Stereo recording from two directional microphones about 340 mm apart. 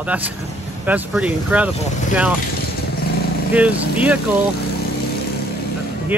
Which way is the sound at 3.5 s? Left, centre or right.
Centre.